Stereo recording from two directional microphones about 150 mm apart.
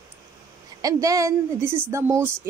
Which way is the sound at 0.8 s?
20° right (ahead or behind).